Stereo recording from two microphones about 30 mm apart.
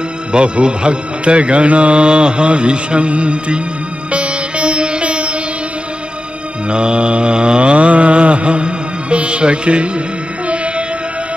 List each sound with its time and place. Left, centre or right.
0.3 s music: right
6.7 s mantra: right